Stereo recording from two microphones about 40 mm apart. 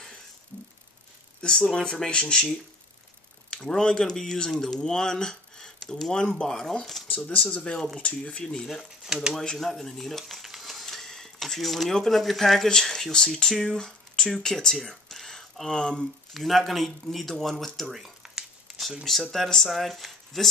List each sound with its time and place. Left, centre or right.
1.4 s speech: left
3.4 s speech: centre
7.0 s a sound: centre
7.5 s speech: left
8.6 s speech: centre
9.3 s speech: centre
10.2 s a sound: centre
12.2 s speech: centre
15.1 s a sound: centre
15.7 s speech: centre
16.3 s speech: centre
17.8 s speech: centre
18.7 s a sound: centre
19.3 s speech: centre